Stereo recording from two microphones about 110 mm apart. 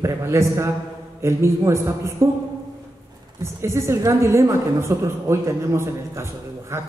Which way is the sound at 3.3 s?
25° right (ahead or behind).